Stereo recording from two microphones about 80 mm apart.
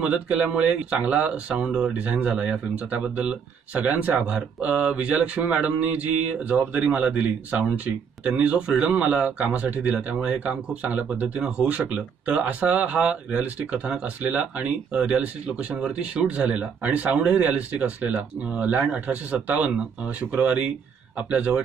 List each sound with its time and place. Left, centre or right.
0.0 s speech: centre